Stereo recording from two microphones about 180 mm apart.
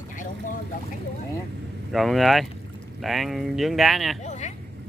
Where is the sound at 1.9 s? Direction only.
Centre (ahead or behind).